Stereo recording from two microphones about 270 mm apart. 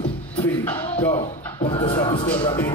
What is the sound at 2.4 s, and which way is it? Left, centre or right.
Speech, centre.